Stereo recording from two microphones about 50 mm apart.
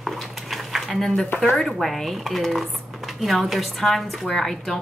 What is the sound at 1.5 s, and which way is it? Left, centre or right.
Speech, centre.